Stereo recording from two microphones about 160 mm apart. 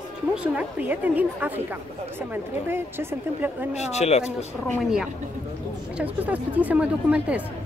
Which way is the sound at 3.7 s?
45° left (ahead or behind).